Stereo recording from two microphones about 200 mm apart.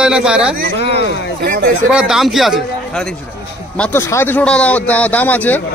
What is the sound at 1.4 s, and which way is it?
Speech, 50° right (ahead or behind).